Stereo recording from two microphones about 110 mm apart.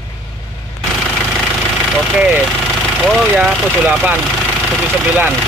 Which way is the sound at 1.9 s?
Centre (ahead or behind).